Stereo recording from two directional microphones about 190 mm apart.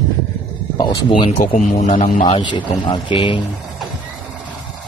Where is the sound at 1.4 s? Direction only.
45° left (ahead or behind); by 3.4 s 25° left (ahead or behind).